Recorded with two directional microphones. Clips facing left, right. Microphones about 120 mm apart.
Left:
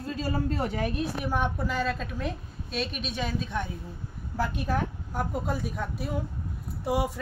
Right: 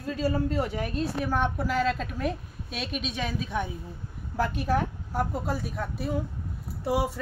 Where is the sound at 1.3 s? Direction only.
Centre (ahead or behind).